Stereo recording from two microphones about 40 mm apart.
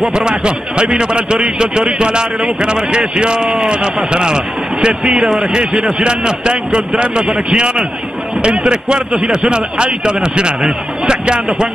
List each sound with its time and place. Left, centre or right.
0.1 s speech: right